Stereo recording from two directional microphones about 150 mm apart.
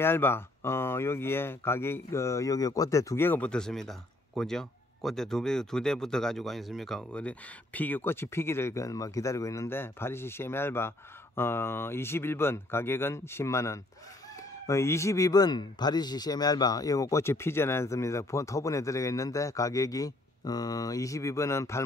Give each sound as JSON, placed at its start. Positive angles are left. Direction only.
{"t": 0.0, "sound": "speech", "side_deg": 15}